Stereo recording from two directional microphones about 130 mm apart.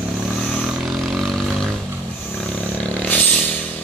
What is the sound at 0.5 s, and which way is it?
Vehicle, centre (ahead or behind).